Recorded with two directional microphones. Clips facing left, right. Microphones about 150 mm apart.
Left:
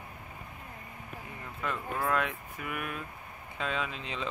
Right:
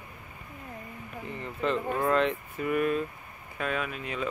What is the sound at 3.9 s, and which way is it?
Speech, 25° left (ahead or behind).